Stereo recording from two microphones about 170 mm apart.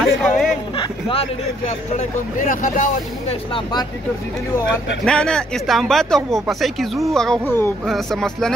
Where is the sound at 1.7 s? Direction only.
45° left (ahead or behind).